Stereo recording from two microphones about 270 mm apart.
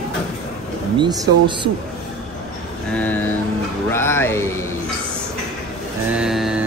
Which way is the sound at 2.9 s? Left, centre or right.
Centre.